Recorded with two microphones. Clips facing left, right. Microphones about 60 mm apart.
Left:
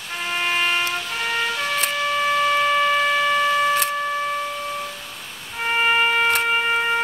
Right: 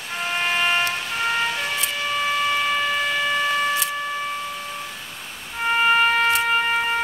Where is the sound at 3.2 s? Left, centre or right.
Centre.